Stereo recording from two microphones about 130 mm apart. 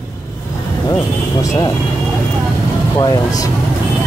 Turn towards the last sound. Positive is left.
turn(degrees=25)  # may be behind; listen again after turning